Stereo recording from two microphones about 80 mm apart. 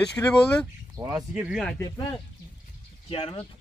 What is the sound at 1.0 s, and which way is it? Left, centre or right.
Speech, right.